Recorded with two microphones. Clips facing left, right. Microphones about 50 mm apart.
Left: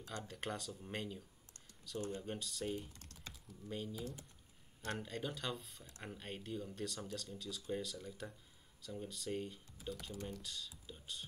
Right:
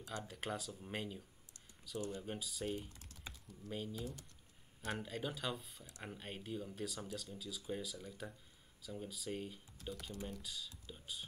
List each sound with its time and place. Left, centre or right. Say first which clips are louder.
0.0 s speech: even; centre
2.0 s speech: even; left
2.2 s speech: even; centre